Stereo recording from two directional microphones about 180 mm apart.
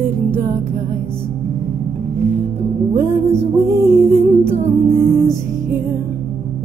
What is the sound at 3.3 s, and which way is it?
Music, 15° right (ahead or behind).